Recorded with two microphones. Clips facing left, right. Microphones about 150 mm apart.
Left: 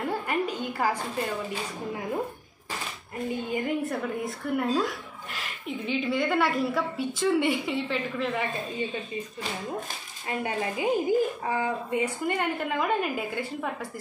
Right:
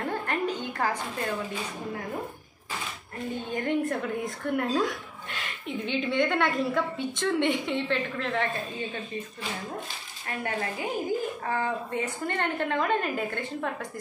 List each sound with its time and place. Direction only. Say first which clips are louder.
0.0 s a sound: left 1 dB; 10° left (ahead or behind)
3.5 s speech: right 3 dB; 5° left (ahead or behind)
10.2 s a woman's voice: left 2 dB; 20° left (ahead or behind)